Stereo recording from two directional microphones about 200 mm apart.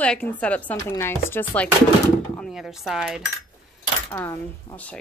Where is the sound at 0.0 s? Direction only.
5° left (ahead or behind).